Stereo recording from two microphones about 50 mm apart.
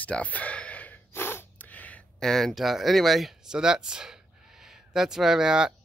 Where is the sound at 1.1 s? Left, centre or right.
Left.